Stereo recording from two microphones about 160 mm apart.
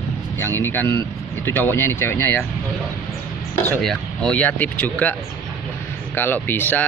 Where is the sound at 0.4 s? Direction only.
15° left (ahead or behind).